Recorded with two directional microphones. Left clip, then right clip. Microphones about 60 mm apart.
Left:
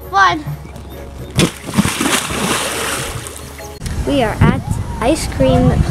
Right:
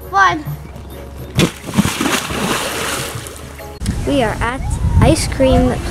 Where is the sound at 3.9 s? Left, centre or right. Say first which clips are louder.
Even; centre.